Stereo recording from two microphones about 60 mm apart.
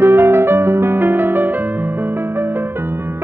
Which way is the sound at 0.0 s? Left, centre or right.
Right.